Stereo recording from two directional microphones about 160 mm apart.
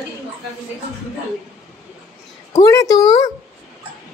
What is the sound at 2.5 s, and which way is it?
Speech, 20° left (ahead or behind).